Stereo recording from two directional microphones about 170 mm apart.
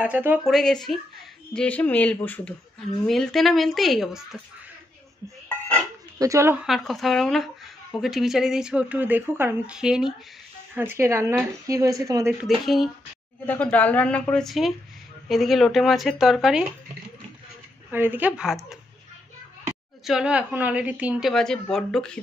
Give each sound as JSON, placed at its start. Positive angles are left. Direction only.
{"t": 0.0, "sound": "speech", "side_deg": -10}
{"t": 0.5, "sound": "a woman's voice", "side_deg": 0}
{"t": 6.1, "sound": "speech", "side_deg": -20}
{"t": 6.6, "sound": "speech", "side_deg": 0}
{"t": 10.7, "sound": "speech", "side_deg": -15}
{"t": 12.4, "sound": "a woman's voice", "side_deg": 0}
{"t": 17.9, "sound": "speech", "side_deg": -10}
{"t": 20.1, "sound": "speech", "side_deg": -5}